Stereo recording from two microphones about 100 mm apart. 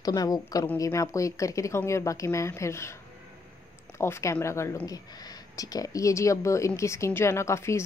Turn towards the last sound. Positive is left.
turn(degrees=30)  # may be behind; listen again after turning